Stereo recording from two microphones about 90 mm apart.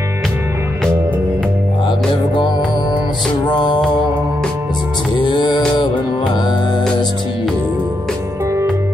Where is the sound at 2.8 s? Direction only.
55° left (ahead or behind).